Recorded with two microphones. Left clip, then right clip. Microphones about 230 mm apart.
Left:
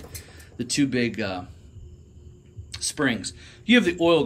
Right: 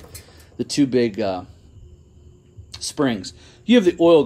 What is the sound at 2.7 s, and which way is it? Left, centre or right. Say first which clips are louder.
Speech: right 3 dB; centre.